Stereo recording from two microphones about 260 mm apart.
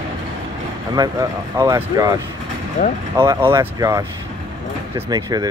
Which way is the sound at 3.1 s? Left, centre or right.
Centre.